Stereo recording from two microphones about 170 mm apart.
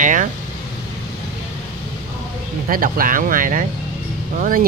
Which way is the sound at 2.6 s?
55° right (ahead or behind).